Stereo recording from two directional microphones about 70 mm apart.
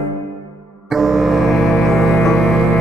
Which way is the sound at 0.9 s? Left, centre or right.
Centre.